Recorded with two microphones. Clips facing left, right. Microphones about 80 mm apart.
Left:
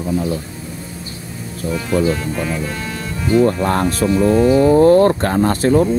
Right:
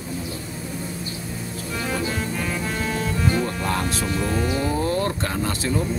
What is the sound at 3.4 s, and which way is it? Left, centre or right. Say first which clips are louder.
Speech: left 9 dB; left.